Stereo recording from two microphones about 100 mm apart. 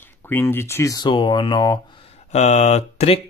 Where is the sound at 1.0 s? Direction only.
50° left (ahead or behind).